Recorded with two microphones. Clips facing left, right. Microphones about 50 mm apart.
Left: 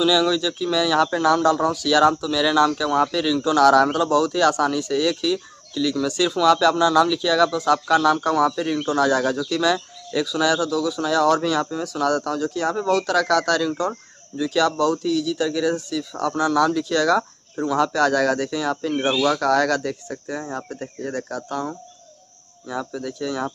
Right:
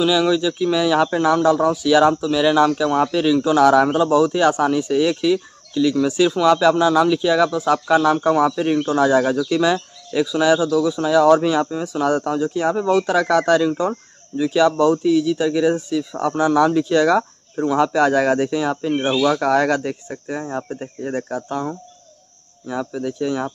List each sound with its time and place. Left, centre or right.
0.0 s speech: centre